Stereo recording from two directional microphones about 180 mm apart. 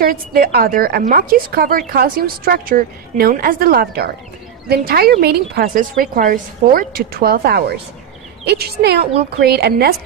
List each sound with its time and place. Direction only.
0.3 s a woman's voice: 60° right (ahead or behind)